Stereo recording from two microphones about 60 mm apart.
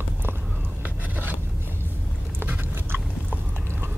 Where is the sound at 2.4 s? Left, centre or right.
Right.